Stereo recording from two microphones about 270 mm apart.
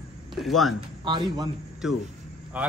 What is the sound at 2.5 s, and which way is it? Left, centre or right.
Speech, centre.